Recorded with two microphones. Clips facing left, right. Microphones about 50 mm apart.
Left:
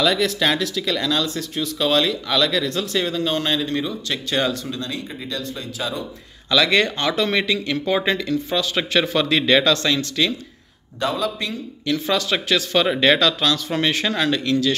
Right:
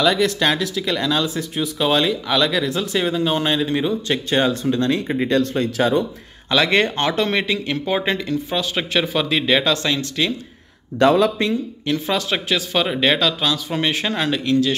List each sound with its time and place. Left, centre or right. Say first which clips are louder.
0.0 s speech: right 2 dB; centre; by 4.6 s right
4.6 s speech: right 9 dB; right
6.5 s speech: right 1 dB; right
9.0 s speech: left 1 dB; centre
11.0 s speech: right 8 dB; right
11.8 s speech: left 3 dB; right
12.8 s speech: left 1 dB; centre
13.1 s speech: left 1 dB; centre